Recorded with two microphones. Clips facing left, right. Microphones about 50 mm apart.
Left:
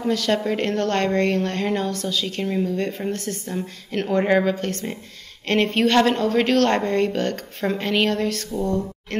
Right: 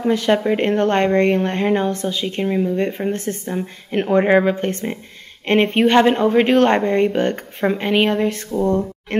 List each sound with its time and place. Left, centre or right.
0.0 s a woman's voice: right